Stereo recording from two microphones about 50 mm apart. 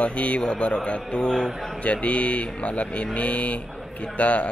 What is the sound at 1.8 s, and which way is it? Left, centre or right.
Speech, left.